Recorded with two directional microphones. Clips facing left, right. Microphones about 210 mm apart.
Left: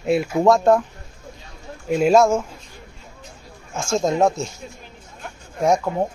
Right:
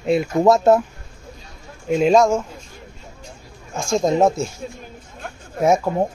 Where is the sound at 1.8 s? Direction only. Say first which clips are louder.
Even; 5° left (ahead or behind).